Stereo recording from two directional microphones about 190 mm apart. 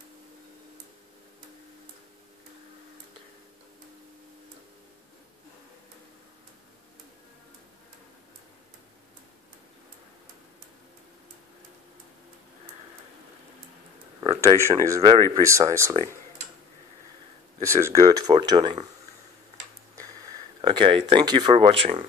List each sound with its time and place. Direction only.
14.2 s speech: 15° right (ahead or behind)
17.6 s speech: 15° right (ahead or behind)
20.6 s speech: 25° right (ahead or behind)